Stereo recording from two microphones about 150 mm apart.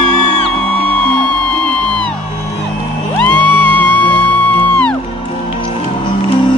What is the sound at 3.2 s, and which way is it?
Music, 10° left (ahead or behind).